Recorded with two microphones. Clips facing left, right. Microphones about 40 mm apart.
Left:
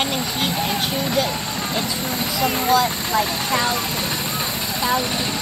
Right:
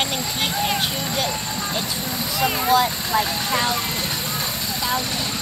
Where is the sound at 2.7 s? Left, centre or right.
Centre.